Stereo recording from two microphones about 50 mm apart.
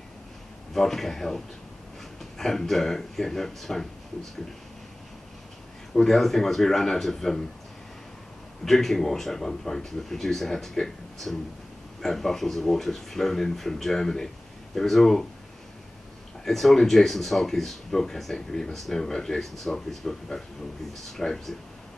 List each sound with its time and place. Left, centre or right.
0.7 s speech: centre
5.9 s speech: centre
8.6 s speech: centre
16.4 s speech: centre